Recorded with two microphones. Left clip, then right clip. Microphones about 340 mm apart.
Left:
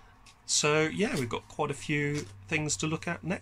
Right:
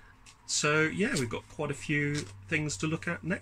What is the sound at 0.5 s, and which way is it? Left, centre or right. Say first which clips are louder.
Speech: left 1 dB; centre.